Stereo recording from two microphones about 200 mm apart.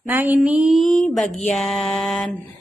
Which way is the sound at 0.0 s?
10° right (ahead or behind).